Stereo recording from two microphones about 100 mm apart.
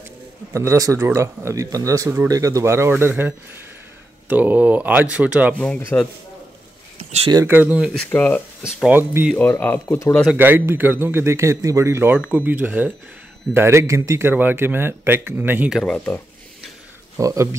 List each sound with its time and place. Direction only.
0.5 s a man's voice: 30° right (ahead or behind); by 5.6 s 15° right (ahead or behind)
5.9 s speech: 15° left (ahead or behind)
7.4 s speech: 15° right (ahead or behind)
8.1 s speech: 20° left (ahead or behind)
8.8 s speech: 15° right (ahead or behind)
9.4 s speech: 20° left (ahead or behind)
10.3 s speech: 20° right (ahead or behind)
13.5 s speech: 25° right (ahead or behind)
15.8 s speech: 10° left (ahead or behind)
17.2 s a man's voice: 30° right (ahead or behind)